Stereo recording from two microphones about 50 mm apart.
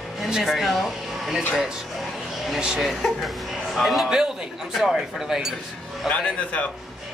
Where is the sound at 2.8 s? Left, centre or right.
Centre.